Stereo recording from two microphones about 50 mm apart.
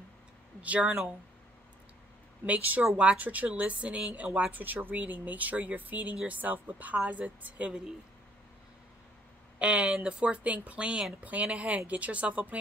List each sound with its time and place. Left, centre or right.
0.6 s speech: right
2.4 s speech: right
9.6 s speech: right